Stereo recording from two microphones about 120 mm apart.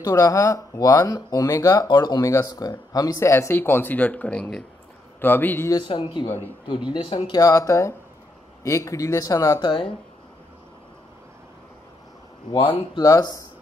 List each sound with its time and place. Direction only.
0.0 s speech: 30° left (ahead or behind); by 4.6 s 5° left (ahead or behind)
5.2 s speech: 15° left (ahead or behind)
5.7 s speech: 40° left (ahead or behind)
7.3 s speech: 30° left (ahead or behind)
9.7 s speech: 45° left (ahead or behind)
12.4 s speech: 45° left (ahead or behind)
13.0 s speech: 30° left (ahead or behind)